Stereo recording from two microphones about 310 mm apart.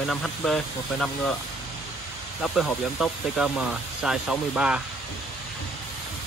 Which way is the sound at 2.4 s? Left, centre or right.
Centre.